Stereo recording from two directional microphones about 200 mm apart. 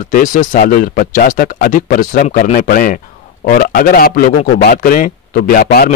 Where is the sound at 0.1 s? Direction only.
40° left (ahead or behind).